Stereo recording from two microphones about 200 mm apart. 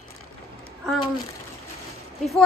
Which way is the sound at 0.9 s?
20° left (ahead or behind).